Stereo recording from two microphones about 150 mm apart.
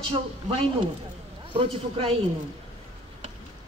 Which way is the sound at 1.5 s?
40° right (ahead or behind).